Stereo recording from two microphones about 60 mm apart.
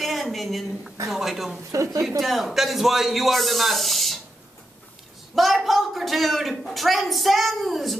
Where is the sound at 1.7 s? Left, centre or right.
Right.